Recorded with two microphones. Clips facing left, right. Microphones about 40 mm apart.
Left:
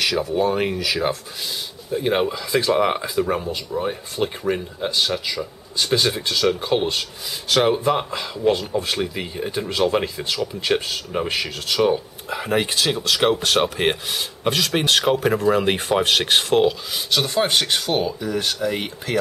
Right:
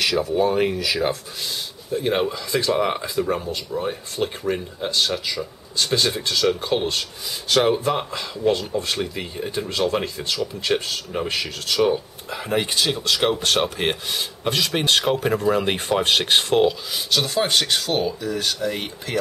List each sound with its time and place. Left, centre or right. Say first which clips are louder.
0.0 s speech: even; centre